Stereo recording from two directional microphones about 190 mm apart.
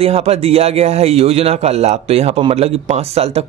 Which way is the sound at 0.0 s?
30° right (ahead or behind).